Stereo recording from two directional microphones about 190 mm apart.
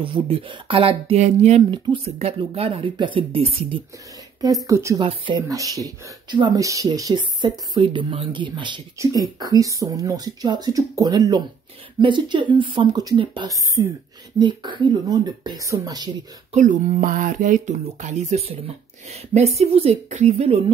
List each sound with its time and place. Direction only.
0.0 s speech: 25° right (ahead or behind)
4.6 s speech: 15° right (ahead or behind)
5.0 s speech: 25° right (ahead or behind)
16.5 s speech: 40° right (ahead or behind)